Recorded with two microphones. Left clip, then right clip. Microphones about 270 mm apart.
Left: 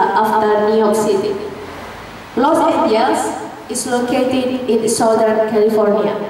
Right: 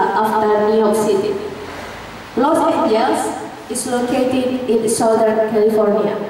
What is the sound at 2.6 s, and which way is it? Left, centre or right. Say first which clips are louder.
A woman's voice: left 1 dB; centre.